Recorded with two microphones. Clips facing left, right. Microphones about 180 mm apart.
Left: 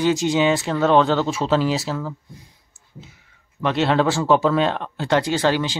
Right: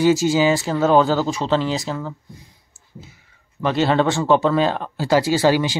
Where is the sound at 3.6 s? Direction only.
Centre (ahead or behind).